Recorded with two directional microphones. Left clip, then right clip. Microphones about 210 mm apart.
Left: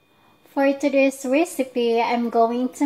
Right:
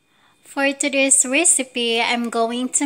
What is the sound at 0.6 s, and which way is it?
A woman's voice, 5° right (ahead or behind).